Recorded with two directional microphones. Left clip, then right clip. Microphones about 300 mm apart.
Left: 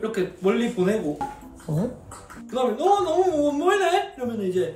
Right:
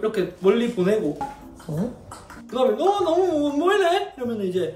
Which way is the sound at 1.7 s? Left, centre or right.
Left.